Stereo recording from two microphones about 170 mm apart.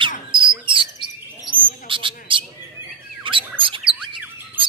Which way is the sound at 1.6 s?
30° right (ahead or behind).